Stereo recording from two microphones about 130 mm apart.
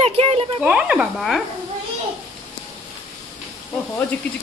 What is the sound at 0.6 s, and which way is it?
Speech, 5° right (ahead or behind).